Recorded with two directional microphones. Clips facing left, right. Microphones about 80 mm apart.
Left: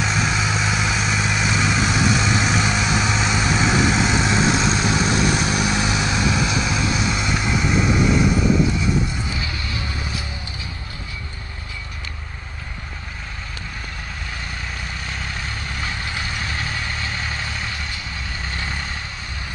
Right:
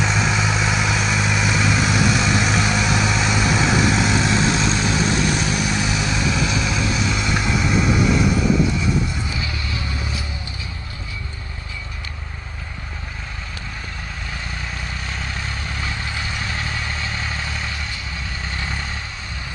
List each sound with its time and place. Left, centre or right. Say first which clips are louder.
0.0 s vehicle: right 1 dB; centre
7.4 s vehicle: even; centre
15.0 s vehicle: even; centre